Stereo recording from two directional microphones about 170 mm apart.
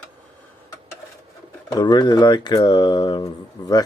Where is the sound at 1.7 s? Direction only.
25° left (ahead or behind).